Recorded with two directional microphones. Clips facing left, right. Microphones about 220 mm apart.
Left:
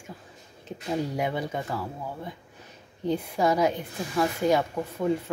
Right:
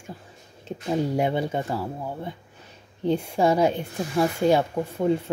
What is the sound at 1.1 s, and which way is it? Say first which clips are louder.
Speech: right 5 dB; 30° right (ahead or behind).